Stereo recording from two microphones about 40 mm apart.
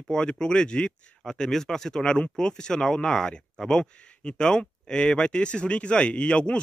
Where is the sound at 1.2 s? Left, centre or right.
Centre.